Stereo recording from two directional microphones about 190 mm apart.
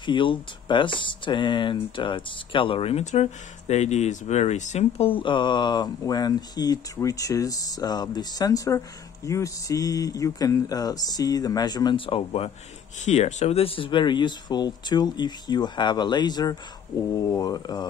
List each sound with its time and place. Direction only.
0.0 s speech: 25° left (ahead or behind)